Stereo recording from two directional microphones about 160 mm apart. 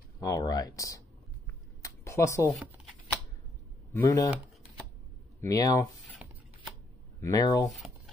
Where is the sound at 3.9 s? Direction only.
20° left (ahead or behind).